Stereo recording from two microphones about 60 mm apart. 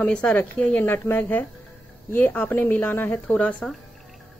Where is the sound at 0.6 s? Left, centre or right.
Left.